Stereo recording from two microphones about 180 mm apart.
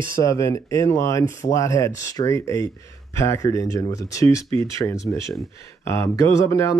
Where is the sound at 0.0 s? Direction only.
15° left (ahead or behind).